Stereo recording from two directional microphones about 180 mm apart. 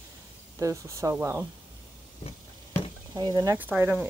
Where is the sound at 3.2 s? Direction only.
25° right (ahead or behind).